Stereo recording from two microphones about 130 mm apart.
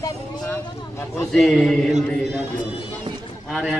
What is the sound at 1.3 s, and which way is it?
Speech, centre (ahead or behind).